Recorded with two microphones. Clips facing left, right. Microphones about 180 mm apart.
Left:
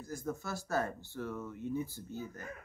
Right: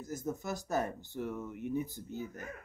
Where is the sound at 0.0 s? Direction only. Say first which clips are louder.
Right 2 dB; 20° right (ahead or behind).